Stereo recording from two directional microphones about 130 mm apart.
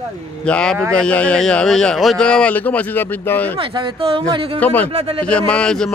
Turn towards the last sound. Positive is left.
turn(degrees=5)  # may be behind; listen again after turning